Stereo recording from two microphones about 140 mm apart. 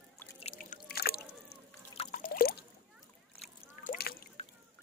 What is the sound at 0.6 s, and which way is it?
Drip, 90° left.